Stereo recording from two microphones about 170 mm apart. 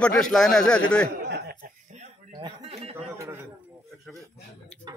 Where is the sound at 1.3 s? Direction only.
75° right (ahead or behind).